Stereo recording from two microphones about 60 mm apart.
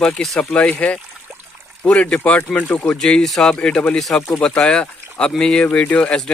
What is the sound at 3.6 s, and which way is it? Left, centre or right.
Speech, centre.